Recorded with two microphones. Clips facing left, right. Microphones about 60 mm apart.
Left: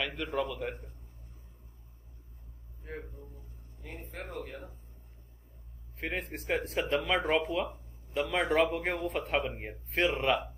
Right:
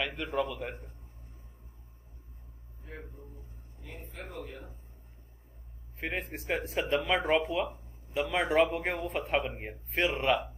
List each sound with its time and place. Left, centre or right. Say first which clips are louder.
0.0 s speech: right 1 dB; centre
2.8 s speech: left 5 dB; left
4.1 s speech: left 2 dB; left
5.9 s speech: even; centre